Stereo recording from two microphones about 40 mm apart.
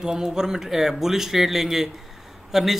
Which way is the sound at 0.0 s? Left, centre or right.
Centre.